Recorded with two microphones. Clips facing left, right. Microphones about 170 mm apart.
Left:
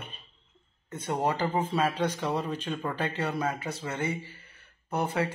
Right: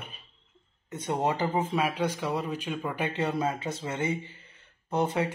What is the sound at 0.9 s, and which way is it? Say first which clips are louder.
Speech: right 1 dB; 20° right (ahead or behind).